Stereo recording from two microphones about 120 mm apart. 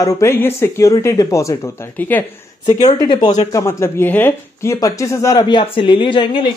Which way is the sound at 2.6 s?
30° left (ahead or behind).